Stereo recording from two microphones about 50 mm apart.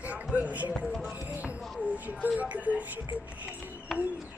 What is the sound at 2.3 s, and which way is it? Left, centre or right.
Speech, right.